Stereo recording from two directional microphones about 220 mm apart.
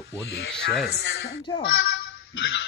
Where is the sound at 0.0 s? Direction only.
50° left (ahead or behind).